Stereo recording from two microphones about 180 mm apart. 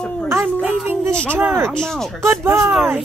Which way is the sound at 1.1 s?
5° left (ahead or behind).